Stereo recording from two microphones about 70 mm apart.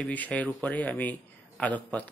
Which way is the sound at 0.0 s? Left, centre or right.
Left.